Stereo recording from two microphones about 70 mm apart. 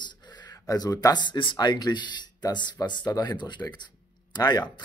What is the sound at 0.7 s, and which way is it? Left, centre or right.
A man's voice, left.